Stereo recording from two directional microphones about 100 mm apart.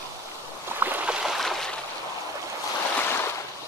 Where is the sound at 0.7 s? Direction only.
20° right (ahead or behind).